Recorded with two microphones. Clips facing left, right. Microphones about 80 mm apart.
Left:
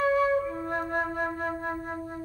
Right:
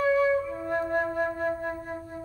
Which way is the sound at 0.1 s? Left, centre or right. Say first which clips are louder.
Right 1 dB; left.